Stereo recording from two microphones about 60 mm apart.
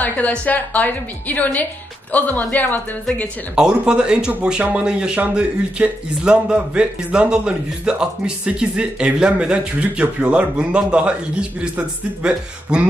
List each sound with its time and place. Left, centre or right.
0.0 s a woman's voice: left
3.5 s speech: centre